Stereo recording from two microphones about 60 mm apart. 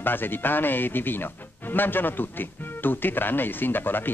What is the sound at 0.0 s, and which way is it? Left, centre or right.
Speech, left.